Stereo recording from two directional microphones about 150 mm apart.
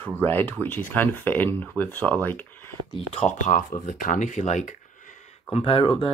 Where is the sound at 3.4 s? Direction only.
60° left (ahead or behind).